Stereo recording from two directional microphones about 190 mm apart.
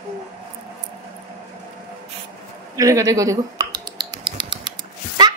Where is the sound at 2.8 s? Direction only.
15° right (ahead or behind).